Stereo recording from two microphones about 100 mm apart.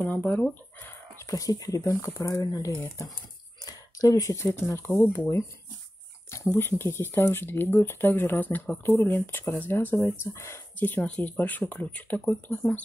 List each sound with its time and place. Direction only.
0.0 s speech: 15° left (ahead or behind)
1.2 s speech: 35° left (ahead or behind)
3.6 s a sound: 35° left (ahead or behind)
4.6 s speech: 25° left (ahead or behind)
11.1 s speech: 15° left (ahead or behind)